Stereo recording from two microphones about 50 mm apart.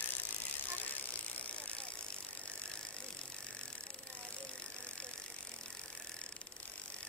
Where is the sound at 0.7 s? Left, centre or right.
Left.